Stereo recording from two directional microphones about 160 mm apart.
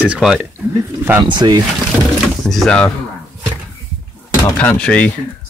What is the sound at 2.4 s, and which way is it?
Speech, 5° left (ahead or behind).